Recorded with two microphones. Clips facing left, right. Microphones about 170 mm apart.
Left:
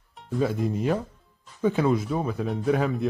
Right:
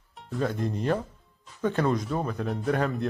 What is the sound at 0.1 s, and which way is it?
A man's voice, centre (ahead or behind).